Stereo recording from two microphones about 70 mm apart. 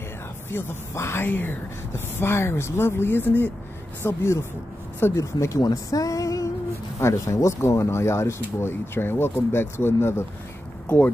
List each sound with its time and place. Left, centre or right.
0.5 s speech: left
4.0 s speech: left